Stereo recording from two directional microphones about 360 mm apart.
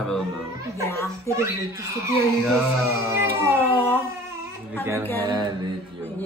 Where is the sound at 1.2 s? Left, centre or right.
Centre.